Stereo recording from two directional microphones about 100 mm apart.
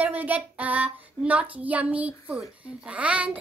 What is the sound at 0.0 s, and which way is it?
A child's voice, 15° right (ahead or behind).